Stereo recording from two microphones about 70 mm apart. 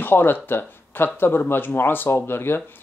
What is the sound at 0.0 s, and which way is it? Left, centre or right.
Speech, left.